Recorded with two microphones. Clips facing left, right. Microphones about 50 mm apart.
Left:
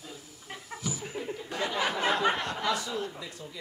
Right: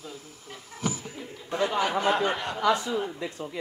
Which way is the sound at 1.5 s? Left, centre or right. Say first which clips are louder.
Right 7 dB; right.